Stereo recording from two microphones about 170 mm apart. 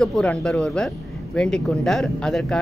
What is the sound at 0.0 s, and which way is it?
Speech, 5° left (ahead or behind).